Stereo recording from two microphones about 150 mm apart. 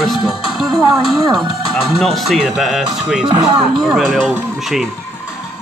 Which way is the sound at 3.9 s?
5° left (ahead or behind).